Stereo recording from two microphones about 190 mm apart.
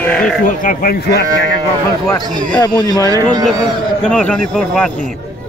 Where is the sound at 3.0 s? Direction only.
20° right (ahead or behind).